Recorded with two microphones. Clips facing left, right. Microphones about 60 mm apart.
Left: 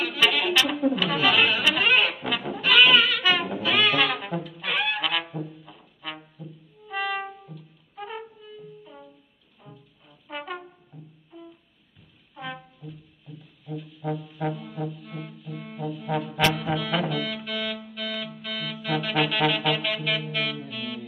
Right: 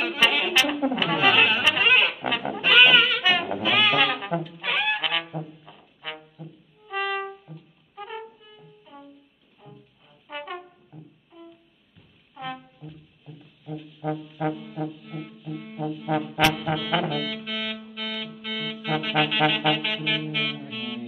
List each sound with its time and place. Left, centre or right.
0.2 s brass instrument: right
1.7 s a sound: right
2.2 s goat: centre
2.6 s goat: right
3.4 s a sound: centre
4.1 s saxophone: centre
5.3 s brass instrument: centre
6.3 s music: centre
10.2 s brass instrument: centre
12.4 s music: centre
13.3 s music: centre
13.7 s music: centre